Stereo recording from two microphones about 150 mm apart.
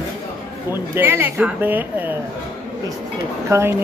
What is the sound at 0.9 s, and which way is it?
Speech, 15° right (ahead or behind).